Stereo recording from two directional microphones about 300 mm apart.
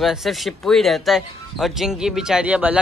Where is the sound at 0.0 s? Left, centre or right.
Centre.